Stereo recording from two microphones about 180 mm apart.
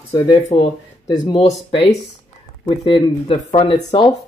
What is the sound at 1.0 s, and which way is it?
Speech, 20° left (ahead or behind).